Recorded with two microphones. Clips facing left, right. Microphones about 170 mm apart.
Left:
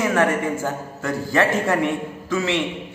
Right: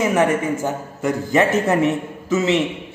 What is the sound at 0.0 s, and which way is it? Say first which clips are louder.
A woman's voice: right 2 dB; 15° right (ahead or behind).